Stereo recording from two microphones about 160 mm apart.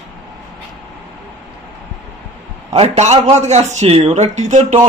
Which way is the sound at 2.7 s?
45° right (ahead or behind).